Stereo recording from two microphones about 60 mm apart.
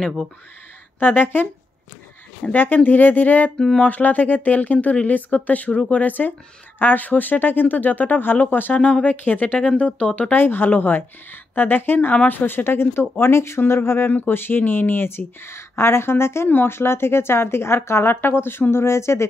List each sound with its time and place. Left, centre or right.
0.9 s speech: left
2.5 s speech: left
3.5 s speech: centre
3.9 s speech: left
8.8 s speech: centre
10.3 s speech: left